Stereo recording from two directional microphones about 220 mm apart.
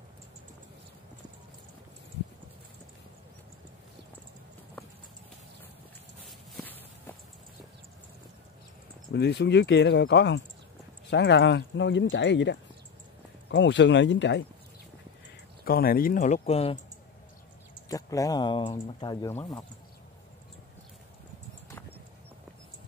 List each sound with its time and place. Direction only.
6.5 s walk: 10° left (ahead or behind)
9.1 s speech: 50° left (ahead or behind)
15.6 s speech: 40° left (ahead or behind)
17.8 s speech: 15° left (ahead or behind)
19.2 s speech: 10° left (ahead or behind)